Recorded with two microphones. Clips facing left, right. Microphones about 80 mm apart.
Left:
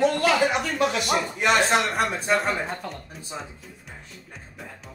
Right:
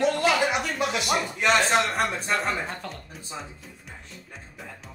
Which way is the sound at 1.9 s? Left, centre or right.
Centre.